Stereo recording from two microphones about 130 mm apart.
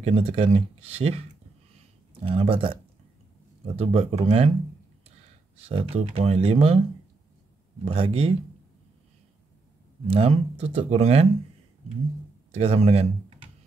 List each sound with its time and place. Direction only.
0.0 s speech: 50° right (ahead or behind)
5.7 s speech: 50° right (ahead or behind)
7.8 s speech: 50° right (ahead or behind)
10.0 s speech: 50° right (ahead or behind)
12.4 s speech: 50° right (ahead or behind)